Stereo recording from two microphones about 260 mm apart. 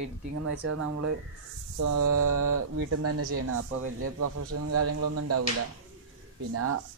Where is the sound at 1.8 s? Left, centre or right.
Right.